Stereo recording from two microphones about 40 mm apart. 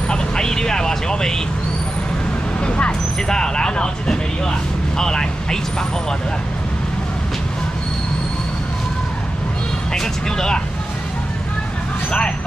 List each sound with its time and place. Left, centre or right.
0.1 s vehicle: centre
2.6 s vehicle: left
3.3 s speech: centre
9.9 s speech: centre